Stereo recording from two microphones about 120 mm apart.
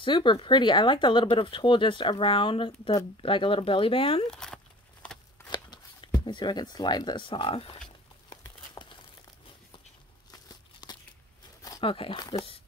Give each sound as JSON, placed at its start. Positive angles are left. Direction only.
{"t": 0.0, "sound": "speech", "side_deg": 40}
{"t": 4.3, "sound": "speech", "side_deg": 5}
{"t": 5.0, "sound": "shuffling cards", "side_deg": 10}
{"t": 5.5, "sound": "a sound", "side_deg": 35}
{"t": 6.2, "sound": "speech", "side_deg": 40}
{"t": 8.8, "sound": "crumpling", "side_deg": 20}
{"t": 10.3, "sound": "a sound", "side_deg": 35}
{"t": 11.8, "sound": "speech", "side_deg": 45}